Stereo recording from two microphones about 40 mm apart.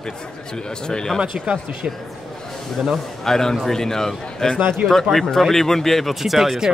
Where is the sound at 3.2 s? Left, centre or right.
Centre.